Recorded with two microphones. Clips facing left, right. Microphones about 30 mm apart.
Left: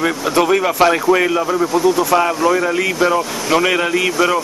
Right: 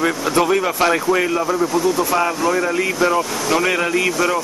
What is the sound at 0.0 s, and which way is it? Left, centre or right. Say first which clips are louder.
Speech: left 1 dB; centre.